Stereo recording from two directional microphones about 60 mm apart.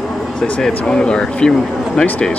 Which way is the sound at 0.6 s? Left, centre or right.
Centre.